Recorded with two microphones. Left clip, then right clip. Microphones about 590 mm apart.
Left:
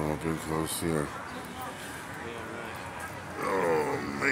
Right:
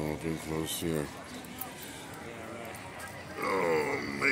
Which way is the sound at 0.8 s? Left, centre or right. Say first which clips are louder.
Left 3 dB; right.